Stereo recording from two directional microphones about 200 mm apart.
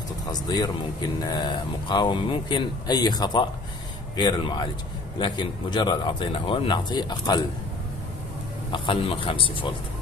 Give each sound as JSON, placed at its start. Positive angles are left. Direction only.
{"t": 0.3, "sound": "speech", "side_deg": 20}
{"t": 8.7, "sound": "speech", "side_deg": 25}